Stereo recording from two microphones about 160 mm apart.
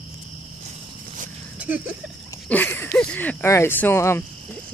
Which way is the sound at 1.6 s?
10° right (ahead or behind).